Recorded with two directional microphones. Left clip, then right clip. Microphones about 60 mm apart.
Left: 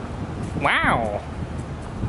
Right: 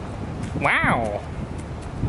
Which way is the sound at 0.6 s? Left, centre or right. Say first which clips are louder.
Even; centre.